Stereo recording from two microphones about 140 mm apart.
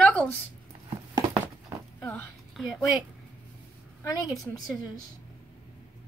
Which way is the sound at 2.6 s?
Centre (ahead or behind).